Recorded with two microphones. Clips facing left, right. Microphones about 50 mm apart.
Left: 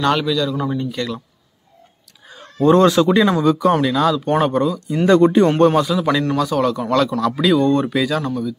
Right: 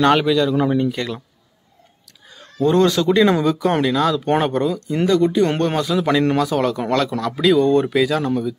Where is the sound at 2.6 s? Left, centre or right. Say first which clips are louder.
Left 3 dB; left.